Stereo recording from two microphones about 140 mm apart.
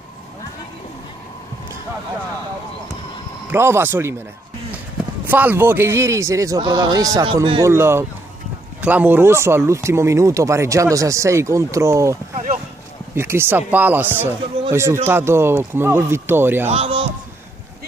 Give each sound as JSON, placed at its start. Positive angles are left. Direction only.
{"t": 3.4, "sound": "speech", "side_deg": -15}
{"t": 5.2, "sound": "speech", "side_deg": -15}
{"t": 16.6, "sound": "a man's voice", "side_deg": -45}